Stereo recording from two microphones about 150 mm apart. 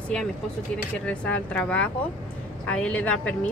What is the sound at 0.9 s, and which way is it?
Speech, 10° left (ahead or behind).